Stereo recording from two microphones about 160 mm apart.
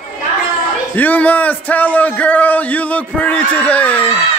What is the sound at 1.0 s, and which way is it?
Speech, 10° left (ahead or behind).